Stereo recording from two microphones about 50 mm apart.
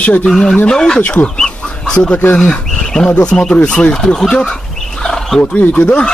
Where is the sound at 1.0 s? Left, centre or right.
Left.